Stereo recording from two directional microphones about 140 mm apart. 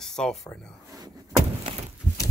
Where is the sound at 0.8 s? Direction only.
25° right (ahead or behind).